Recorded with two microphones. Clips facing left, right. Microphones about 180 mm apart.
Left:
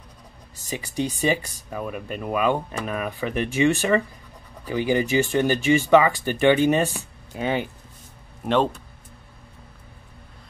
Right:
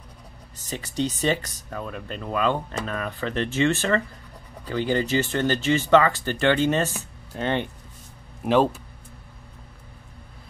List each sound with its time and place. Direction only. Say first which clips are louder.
0.7 s speech: even; 10° left (ahead or behind)
8.5 s speech: right 1 dB; 5° right (ahead or behind)